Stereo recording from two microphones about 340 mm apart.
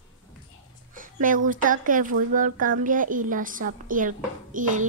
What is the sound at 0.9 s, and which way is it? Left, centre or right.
A woman's voice, right.